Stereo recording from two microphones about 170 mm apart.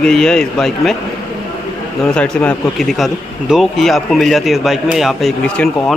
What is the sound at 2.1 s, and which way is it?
Speech, 5° left (ahead or behind).